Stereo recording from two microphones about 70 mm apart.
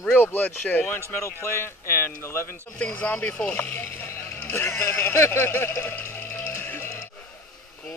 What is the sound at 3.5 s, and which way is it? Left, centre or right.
Vehicle, left.